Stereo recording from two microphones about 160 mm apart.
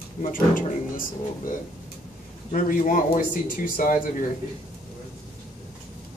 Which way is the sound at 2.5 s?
55° left (ahead or behind).